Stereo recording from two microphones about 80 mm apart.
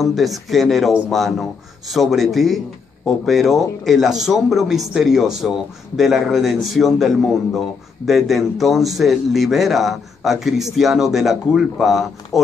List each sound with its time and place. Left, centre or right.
0.0 s a man's voice: centre